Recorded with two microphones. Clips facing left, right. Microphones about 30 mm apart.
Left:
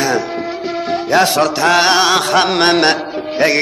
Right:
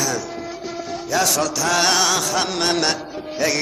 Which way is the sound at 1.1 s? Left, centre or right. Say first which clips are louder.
Left 7 dB; left.